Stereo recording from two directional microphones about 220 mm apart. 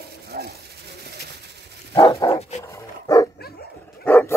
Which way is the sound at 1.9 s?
20° left (ahead or behind).